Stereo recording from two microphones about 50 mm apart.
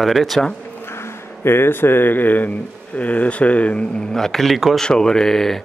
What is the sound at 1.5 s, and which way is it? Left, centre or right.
Speech, left.